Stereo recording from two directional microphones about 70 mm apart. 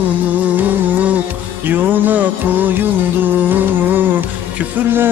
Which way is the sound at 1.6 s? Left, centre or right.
Right.